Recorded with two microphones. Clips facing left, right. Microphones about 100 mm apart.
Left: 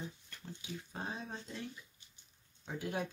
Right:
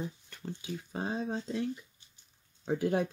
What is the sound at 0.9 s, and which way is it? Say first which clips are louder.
Speech: right 10 dB; 90° right.